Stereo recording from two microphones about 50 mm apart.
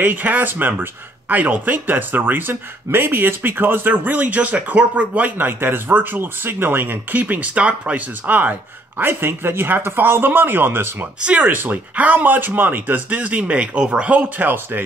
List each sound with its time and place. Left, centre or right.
0.0 s speech: right
5.4 s speech: right
9.2 s speech: right
11.1 s speech: right
11.5 s speech: right